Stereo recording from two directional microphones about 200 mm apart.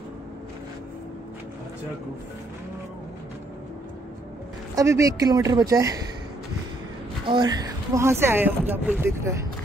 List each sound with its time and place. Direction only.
4.7 s speech: 15° right (ahead or behind)
7.2 s speech: 20° right (ahead or behind)